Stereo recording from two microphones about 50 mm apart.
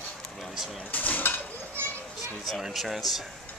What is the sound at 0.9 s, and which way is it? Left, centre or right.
Speech, left.